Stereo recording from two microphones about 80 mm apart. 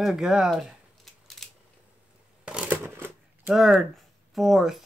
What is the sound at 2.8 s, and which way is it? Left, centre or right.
Shuffling cards, right.